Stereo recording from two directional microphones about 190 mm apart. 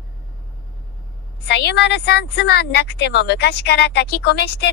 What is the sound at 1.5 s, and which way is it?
A woman's voice, 60° left (ahead or behind).